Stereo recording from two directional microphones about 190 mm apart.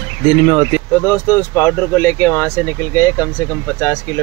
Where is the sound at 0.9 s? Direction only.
15° left (ahead or behind).